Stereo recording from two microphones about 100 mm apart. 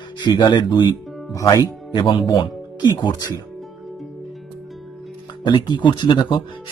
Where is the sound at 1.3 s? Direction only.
35° left (ahead or behind).